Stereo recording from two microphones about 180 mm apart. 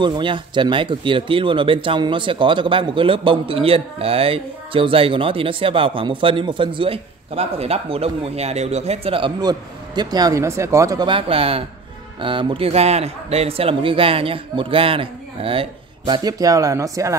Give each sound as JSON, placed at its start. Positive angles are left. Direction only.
{"t": 0.0, "sound": "a man's voice", "side_deg": -25}